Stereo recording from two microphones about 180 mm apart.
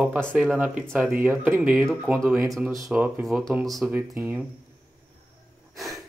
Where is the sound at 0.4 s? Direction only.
5° right (ahead or behind).